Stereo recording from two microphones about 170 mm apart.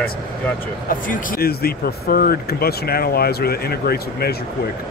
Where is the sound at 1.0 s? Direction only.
55° left (ahead or behind).